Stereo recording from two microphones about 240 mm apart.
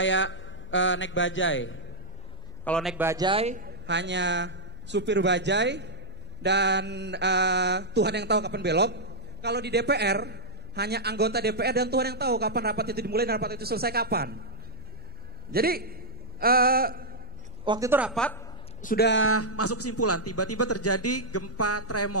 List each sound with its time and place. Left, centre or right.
0.0 s a man's voice: left
2.6 s a man's voice: centre; by 3.7 s right
3.8 s mantra: right
15.5 s a man's voice: right
17.6 s a woman's voice: centre
18.8 s a man's voice: left